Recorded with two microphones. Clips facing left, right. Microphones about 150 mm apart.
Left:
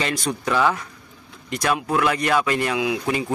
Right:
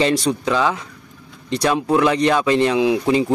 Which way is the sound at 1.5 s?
25° right (ahead or behind).